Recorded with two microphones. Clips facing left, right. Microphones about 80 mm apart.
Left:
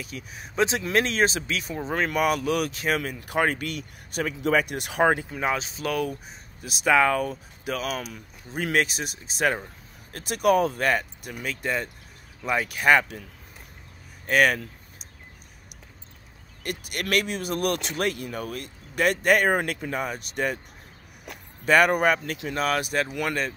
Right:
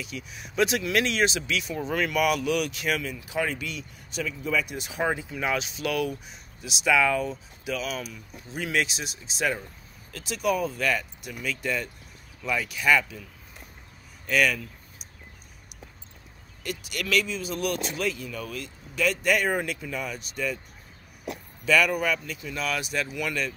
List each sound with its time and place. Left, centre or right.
0.0 s speech: left
3.0 s speech: left
5.4 s speech: left
12.6 s speech: left
14.2 s speech: left
16.6 s speech: left
21.6 s speech: left